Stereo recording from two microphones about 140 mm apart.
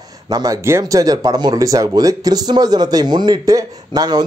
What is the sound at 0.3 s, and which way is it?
Speech, 25° right (ahead or behind).